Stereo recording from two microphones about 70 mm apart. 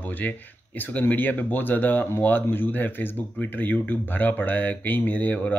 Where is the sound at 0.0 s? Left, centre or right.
Left.